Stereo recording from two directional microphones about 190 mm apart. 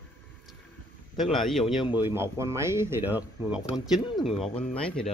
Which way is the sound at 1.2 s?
Centre (ahead or behind).